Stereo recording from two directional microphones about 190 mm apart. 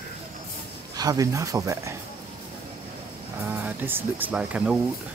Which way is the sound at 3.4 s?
10° right (ahead or behind).